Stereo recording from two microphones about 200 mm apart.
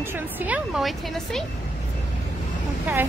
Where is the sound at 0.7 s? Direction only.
Centre (ahead or behind).